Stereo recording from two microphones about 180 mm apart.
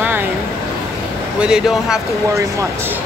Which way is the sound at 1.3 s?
5° right (ahead or behind).